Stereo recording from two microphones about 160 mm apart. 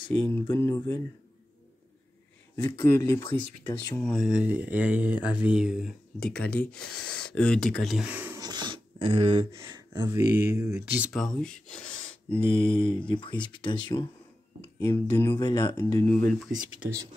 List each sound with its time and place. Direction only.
0.3 s speech: 15° left (ahead or behind)
2.5 s speech: 25° left (ahead or behind)
4.0 s speech: centre (ahead or behind)
8.4 s speech: 25° right (ahead or behind)
11.1 s speech: 5° left (ahead or behind)
12.3 s speech: 35° left (ahead or behind)
14.8 s speech: 20° left (ahead or behind)
15.3 s speech: 30° left (ahead or behind)
16.1 s speech: 5° left (ahead or behind)